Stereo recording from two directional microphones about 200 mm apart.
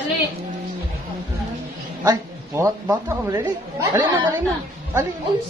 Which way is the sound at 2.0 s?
15° right (ahead or behind).